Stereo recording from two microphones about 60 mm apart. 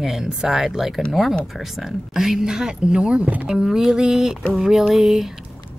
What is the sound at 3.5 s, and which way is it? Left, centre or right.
Speech, centre.